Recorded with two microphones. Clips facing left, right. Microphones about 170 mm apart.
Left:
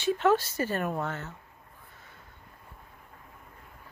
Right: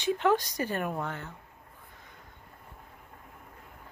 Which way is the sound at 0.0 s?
15° right (ahead or behind).